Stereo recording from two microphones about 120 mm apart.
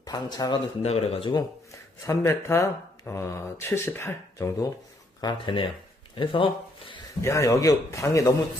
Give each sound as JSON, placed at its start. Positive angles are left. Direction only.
{"t": 0.0, "sound": "speech", "side_deg": 30}
{"t": 0.8, "sound": "speech", "side_deg": 55}
{"t": 1.3, "sound": "speech", "side_deg": 25}
{"t": 5.2, "sound": "speech", "side_deg": 45}
{"t": 7.2, "sound": "speech", "side_deg": 25}